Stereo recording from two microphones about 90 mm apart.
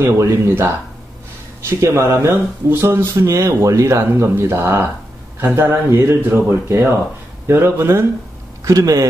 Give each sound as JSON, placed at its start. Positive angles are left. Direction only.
{"t": 0.0, "sound": "speech", "side_deg": -30}
{"t": 8.6, "sound": "speech", "side_deg": -40}